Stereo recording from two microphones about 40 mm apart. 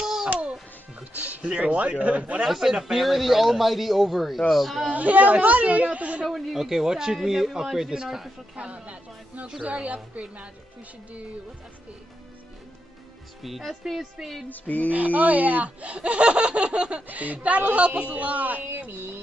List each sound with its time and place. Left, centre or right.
0.0 s music: centre
1.1 s speech: right
2.4 s a man's voice: centre
4.8 s speech: right
6.2 s a man's voice: centre
8.5 s speech: right
13.4 s a man's voice: centre
14.5 s music: left
14.9 s speech: right
17.1 s speech: right
18.9 s music: right